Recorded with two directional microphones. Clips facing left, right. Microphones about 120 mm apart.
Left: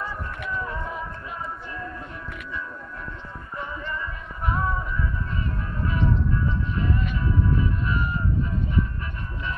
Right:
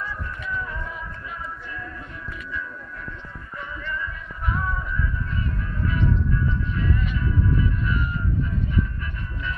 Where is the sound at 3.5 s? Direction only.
30° left (ahead or behind).